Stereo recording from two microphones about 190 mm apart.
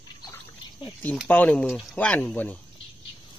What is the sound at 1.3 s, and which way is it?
Speech, 5° left (ahead or behind).